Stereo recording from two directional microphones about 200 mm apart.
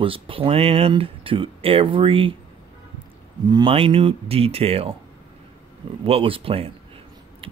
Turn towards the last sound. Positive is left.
turn(degrees=-25)  # may be behind; listen again after turning